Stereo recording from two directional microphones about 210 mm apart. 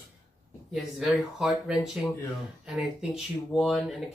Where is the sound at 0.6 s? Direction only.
Centre (ahead or behind).